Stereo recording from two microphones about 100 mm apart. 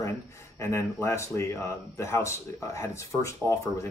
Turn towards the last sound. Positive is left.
turn(degrees=30)  # may be behind; listen again after turning